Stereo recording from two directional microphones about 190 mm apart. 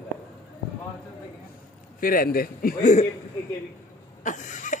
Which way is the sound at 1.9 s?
50° left (ahead or behind).